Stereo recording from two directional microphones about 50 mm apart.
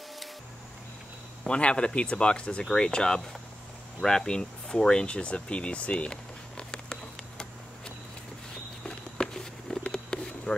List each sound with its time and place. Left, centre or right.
1.4 s speech: centre
4.0 s a sound: centre
8.8 s insect: centre